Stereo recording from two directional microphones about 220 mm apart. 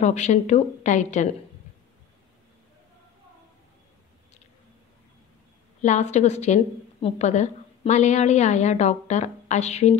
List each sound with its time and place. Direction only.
0.0 s a woman's voice: 30° left (ahead or behind)
5.8 s a woman's voice: 35° left (ahead or behind)